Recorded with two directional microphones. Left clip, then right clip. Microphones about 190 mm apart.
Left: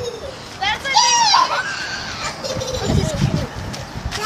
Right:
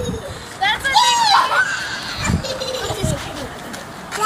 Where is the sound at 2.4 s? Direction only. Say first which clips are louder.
Even; 5° left (ahead or behind).